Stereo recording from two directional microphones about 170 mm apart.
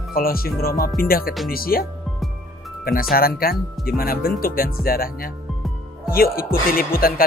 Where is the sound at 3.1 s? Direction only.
60° left (ahead or behind).